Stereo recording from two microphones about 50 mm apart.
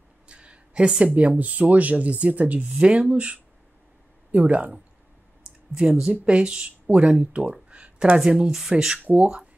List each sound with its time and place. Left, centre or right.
0.3 s a sound: right
1.2 s speech: right
5.8 s speech: centre
9.0 s speech: right